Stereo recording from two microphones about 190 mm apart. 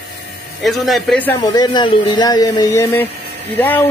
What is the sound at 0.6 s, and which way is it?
Speech, centre (ahead or behind).